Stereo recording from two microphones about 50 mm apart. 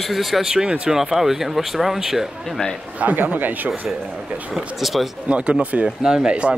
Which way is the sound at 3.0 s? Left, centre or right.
Right.